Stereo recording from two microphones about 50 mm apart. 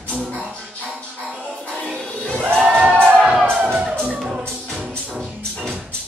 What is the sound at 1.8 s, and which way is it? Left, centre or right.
Music, centre.